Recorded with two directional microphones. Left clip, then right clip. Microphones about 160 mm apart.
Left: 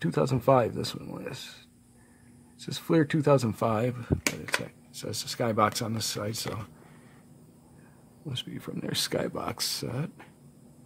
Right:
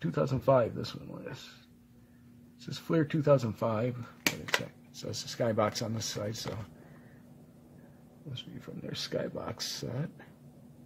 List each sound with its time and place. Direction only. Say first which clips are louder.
0.0 s speech: left 4 dB; 45° left (ahead or behind)
2.6 s speech: left 5 dB; 45° left (ahead or behind); by 6.5 s 25° left (ahead or behind)
8.3 s speech: left 8 dB; 40° left (ahead or behind)